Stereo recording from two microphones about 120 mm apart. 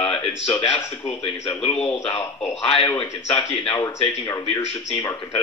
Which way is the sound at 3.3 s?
50° left (ahead or behind).